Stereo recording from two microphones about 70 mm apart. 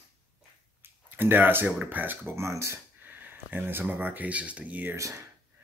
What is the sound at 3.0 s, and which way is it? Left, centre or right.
Speech, right.